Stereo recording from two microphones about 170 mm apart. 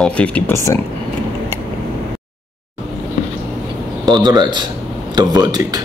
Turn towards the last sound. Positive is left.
turn(degrees=-25)  # may be behind; listen again after turning